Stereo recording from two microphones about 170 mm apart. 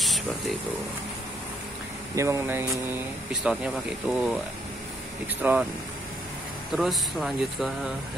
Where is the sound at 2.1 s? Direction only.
15° right (ahead or behind).